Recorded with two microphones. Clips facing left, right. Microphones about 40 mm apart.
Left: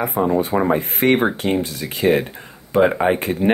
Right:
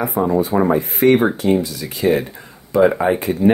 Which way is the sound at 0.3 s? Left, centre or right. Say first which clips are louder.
Right 3 dB; left.